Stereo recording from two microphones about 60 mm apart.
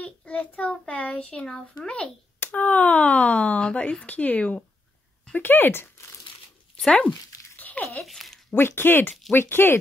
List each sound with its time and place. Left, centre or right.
0.0 s a child's voice: left
6.9 s speech: centre
7.5 s a sound: left
8.0 s a child's voice: centre
8.5 s speech: left